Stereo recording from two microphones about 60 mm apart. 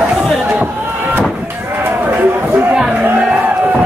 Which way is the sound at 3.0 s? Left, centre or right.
Right.